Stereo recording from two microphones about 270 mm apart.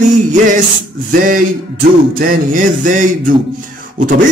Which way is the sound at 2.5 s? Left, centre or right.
Right.